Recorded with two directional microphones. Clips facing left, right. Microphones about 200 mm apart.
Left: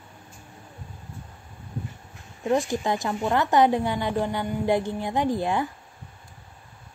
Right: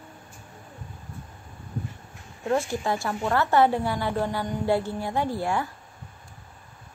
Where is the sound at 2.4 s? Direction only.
15° left (ahead or behind).